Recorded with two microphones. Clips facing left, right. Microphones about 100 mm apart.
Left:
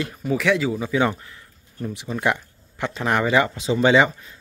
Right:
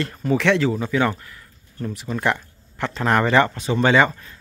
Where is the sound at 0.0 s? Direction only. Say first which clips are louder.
Right 2 dB; 5° left (ahead or behind).